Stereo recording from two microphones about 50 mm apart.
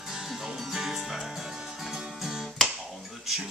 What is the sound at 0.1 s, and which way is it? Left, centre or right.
Music, centre.